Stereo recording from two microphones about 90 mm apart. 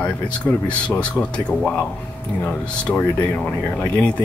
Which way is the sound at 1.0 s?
10° left (ahead or behind).